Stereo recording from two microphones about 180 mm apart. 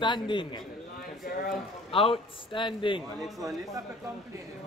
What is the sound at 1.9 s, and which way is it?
A man's voice, 30° left (ahead or behind).